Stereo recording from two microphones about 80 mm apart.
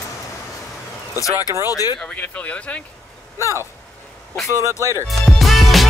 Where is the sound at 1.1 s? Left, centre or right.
Left.